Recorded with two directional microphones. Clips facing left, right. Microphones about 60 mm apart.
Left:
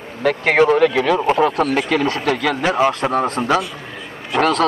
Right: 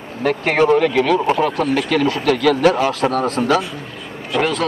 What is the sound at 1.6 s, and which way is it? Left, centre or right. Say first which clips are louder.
Speech: even; left.